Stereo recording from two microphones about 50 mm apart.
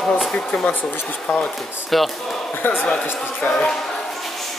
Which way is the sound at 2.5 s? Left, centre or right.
Left.